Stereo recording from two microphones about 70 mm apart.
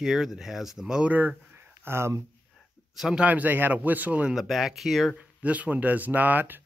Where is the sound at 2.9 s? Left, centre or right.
Centre.